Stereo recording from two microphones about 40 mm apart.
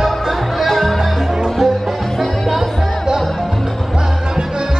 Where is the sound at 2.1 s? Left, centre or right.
Centre.